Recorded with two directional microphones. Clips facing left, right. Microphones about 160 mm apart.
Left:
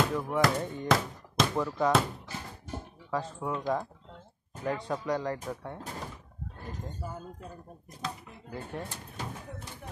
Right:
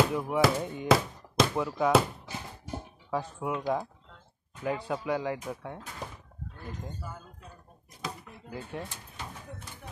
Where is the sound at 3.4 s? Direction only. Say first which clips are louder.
Right 1 dB; 10° right (ahead or behind).